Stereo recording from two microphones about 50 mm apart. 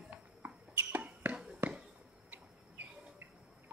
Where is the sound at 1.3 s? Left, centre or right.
Centre.